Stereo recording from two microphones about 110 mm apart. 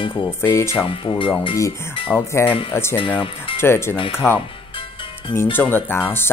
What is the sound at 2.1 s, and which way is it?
Speech, 5° left (ahead or behind).